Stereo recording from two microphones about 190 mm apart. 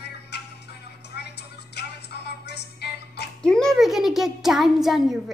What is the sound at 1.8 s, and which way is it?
Music, 60° left (ahead or behind).